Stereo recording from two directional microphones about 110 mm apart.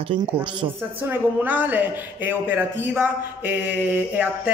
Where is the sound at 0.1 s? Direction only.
50° right (ahead or behind).